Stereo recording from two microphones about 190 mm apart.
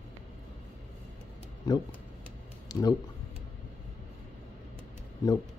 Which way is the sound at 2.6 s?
20° left (ahead or behind).